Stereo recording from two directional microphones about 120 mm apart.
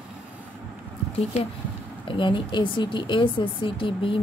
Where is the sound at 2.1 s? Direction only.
45° left (ahead or behind).